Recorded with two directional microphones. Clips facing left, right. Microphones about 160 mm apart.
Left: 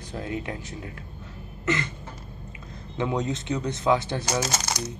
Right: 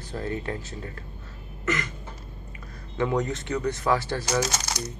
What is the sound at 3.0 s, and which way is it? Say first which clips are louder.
Speech: right 1 dB; 20° left (ahead or behind).